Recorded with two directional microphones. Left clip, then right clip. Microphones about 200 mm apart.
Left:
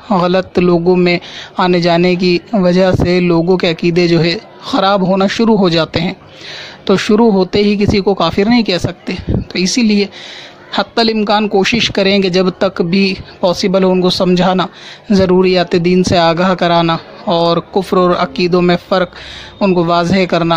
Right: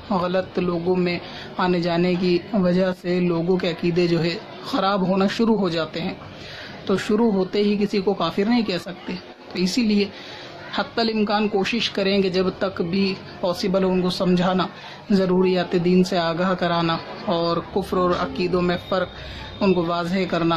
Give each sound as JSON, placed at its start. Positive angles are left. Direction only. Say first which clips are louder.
{"t": 0.1, "sound": "a man's voice", "louder": "left 10 dB", "side_deg": 45}